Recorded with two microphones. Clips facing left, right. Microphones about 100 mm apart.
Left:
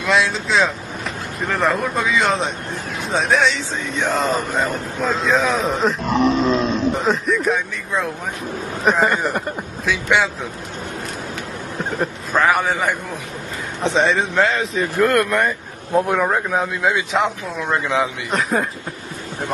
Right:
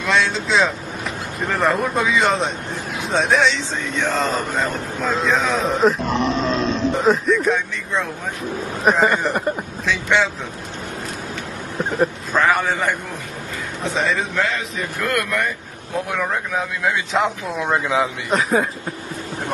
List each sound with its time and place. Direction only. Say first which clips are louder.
0.0 s speech: left 1 dB; centre (ahead or behind)
12.0 s a man's voice: even; 5° left (ahead or behind)
13.8 s speech: left 4 dB; 30° left (ahead or behind)
17.1 s speech: even; centre (ahead or behind)